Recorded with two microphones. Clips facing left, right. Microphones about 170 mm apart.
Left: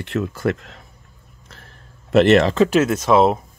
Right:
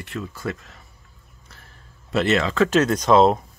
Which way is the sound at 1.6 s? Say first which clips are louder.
Left 4 dB; 65° left (ahead or behind).